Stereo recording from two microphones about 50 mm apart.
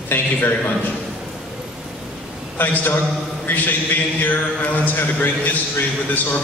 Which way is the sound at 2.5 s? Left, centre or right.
Left.